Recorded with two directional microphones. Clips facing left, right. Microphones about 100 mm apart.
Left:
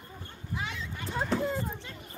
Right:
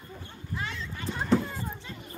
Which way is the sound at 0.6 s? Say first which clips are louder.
Right 1 dB; 10° left (ahead or behind).